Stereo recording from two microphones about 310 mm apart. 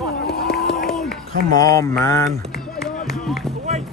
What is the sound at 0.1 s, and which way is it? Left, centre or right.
Run, left.